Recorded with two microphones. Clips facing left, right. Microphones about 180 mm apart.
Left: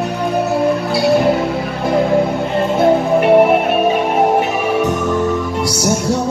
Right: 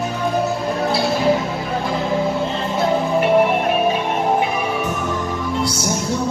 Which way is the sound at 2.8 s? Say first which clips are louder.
Left 4 dB; 55° left (ahead or behind).